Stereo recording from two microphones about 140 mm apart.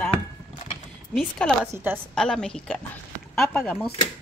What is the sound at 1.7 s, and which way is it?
Speech, 15° right (ahead or behind).